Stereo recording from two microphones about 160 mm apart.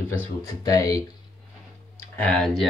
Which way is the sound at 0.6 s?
20° left (ahead or behind).